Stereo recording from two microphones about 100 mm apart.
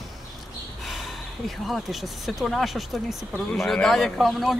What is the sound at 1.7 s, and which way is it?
Speech, centre (ahead or behind).